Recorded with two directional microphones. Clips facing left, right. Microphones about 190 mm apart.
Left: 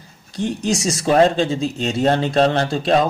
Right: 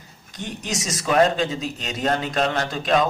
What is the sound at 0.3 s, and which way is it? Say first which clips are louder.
Speech: left 9 dB; 30° left (ahead or behind).